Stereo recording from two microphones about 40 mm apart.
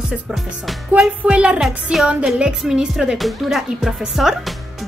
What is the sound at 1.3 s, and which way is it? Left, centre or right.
Music, right.